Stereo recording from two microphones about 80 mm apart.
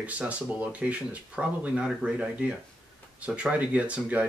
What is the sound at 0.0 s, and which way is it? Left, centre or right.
Speech, centre.